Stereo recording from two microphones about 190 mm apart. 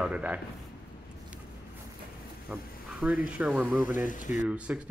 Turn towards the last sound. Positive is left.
turn(degrees=-5)  # may be behind; listen again after turning